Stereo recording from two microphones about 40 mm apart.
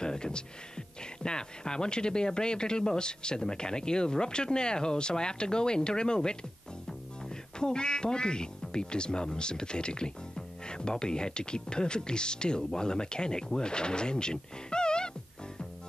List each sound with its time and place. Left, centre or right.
0.0 s speech: left